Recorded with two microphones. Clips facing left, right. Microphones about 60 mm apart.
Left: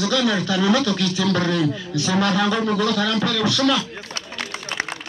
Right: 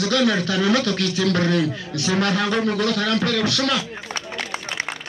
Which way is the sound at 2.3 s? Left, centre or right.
Centre.